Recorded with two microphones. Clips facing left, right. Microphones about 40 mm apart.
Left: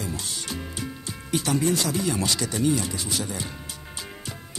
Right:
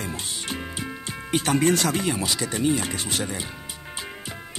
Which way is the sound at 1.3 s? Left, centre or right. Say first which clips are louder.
Right 2 dB; right.